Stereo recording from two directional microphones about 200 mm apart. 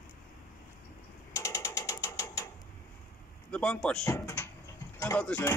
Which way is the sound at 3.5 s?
5° left (ahead or behind).